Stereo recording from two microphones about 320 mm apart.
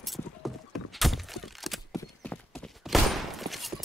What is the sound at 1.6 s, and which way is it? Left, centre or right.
Clip-clop, centre.